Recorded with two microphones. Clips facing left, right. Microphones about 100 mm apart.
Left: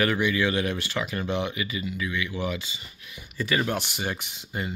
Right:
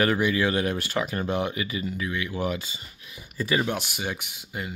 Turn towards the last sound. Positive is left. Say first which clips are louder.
# left 2 dB
turn(degrees=-5)  # may be behind; listen again after turning